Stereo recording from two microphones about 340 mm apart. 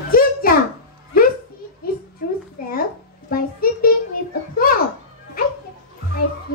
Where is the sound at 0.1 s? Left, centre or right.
Left.